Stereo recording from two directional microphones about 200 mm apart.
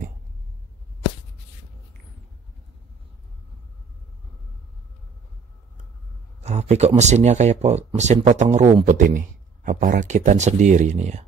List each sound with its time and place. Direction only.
6.4 s speech: 35° right (ahead or behind)